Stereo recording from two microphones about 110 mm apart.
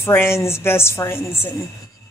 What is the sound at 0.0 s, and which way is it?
A man's voice, 20° left (ahead or behind).